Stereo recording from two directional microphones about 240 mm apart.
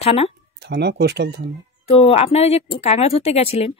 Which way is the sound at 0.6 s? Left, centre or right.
Right.